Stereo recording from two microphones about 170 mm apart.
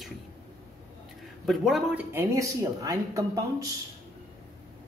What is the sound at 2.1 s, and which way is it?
Speech, 20° right (ahead or behind).